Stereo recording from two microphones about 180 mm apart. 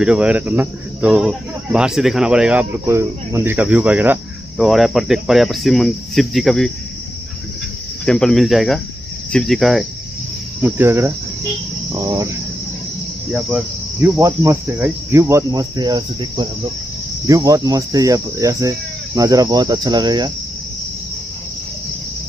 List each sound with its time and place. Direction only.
0.0 s speech: 5° right (ahead or behind)
8.0 s speech: 5° left (ahead or behind)
10.6 s cricket: 15° right (ahead or behind)
14.0 s cricket: 15° right (ahead or behind)
17.3 s speech: 20° right (ahead or behind)